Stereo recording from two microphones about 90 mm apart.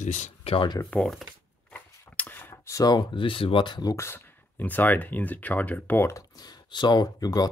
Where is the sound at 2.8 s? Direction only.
60° left (ahead or behind).